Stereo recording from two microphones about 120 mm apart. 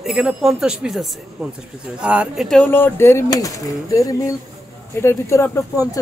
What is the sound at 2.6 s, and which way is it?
Speech, 15° left (ahead or behind).